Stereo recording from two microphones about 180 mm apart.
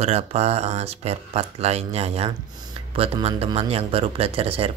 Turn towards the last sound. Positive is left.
turn(degrees=-30)  # may be behind; listen again after turning